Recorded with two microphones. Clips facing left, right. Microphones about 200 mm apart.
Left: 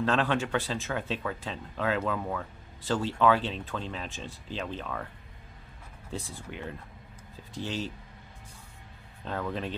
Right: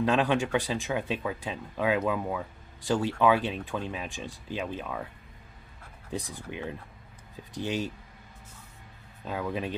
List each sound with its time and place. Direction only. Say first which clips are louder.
0.0 s speech: right 2 dB; 15° right (ahead or behind)
9.2 s speech: right 1 dB; 10° right (ahead or behind)